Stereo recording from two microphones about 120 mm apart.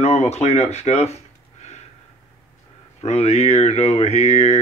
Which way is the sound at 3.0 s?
60° left (ahead or behind).